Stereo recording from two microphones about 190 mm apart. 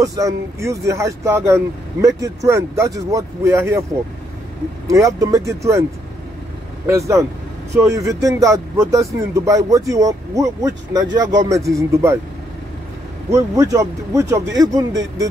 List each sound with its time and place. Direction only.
0.0 s speech: 15° right (ahead or behind)
4.8 s speech: 15° right (ahead or behind)
6.9 s speech: 15° right (ahead or behind)
13.3 s speech: 15° right (ahead or behind)